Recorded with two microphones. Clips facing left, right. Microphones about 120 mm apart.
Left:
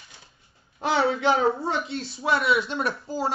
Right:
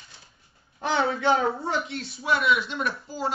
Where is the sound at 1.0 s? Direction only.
20° left (ahead or behind).